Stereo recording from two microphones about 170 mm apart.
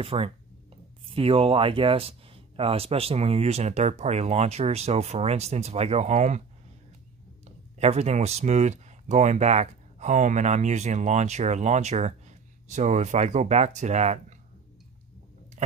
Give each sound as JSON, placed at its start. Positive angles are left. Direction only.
{"t": 0.0, "sound": "speech", "side_deg": -35}
{"t": 7.8, "sound": "speech", "side_deg": -40}